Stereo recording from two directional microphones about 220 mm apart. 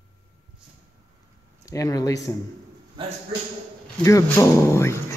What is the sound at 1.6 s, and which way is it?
Speech, 15° left (ahead or behind).